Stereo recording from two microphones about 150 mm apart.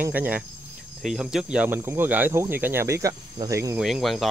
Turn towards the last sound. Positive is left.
turn(degrees=0)  # may be behind; listen again after turning